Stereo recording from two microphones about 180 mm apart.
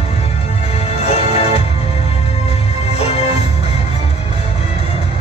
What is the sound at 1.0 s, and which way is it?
Music, 35° left (ahead or behind).